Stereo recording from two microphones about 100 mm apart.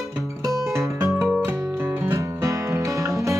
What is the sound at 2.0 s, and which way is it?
Music, 25° right (ahead or behind).